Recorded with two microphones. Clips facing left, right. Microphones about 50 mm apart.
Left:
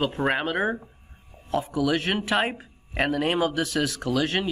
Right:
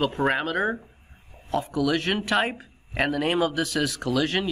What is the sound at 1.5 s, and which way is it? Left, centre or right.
A man's voice, centre.